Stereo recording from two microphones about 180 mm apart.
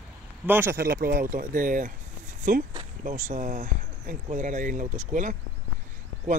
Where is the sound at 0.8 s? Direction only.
55° right (ahead or behind).